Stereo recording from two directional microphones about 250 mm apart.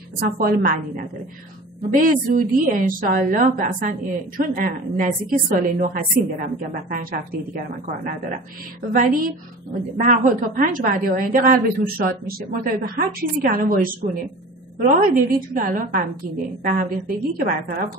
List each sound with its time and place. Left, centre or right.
0.2 s a woman's voice: right